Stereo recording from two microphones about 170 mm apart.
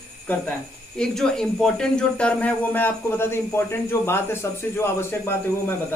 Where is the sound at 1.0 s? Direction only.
5° left (ahead or behind).